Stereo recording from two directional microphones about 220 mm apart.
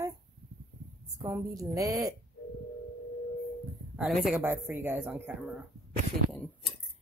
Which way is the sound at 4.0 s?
Centre (ahead or behind).